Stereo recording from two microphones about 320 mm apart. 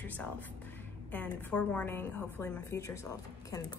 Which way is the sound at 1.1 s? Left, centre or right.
Centre.